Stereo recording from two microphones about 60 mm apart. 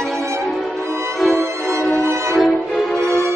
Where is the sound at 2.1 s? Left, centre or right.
Right.